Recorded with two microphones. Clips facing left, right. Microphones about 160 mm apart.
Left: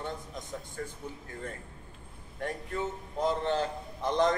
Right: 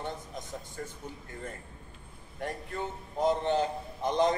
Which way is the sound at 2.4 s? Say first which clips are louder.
Left 2 dB; centre (ahead or behind).